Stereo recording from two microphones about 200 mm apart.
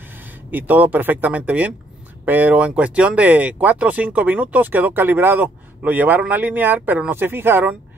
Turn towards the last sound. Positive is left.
turn(degrees=-10)  # may be behind; listen again after turning